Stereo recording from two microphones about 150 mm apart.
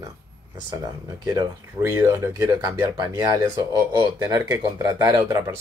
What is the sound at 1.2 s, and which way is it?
Speech, 25° right (ahead or behind).